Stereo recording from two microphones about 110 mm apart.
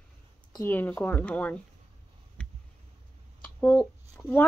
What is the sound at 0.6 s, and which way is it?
Speech, 15° left (ahead or behind).